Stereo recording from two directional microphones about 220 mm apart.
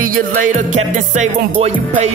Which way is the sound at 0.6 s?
35° right (ahead or behind).